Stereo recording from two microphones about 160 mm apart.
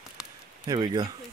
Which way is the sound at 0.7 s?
30° right (ahead or behind).